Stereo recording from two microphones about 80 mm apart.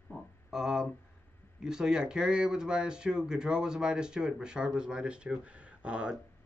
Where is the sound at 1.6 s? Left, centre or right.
Centre.